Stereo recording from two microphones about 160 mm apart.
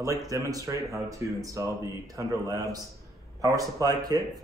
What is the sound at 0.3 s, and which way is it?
Speech, 20° right (ahead or behind).